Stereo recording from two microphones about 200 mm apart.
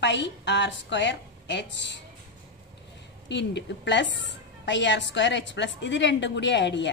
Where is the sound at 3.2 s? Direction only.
60° left (ahead or behind).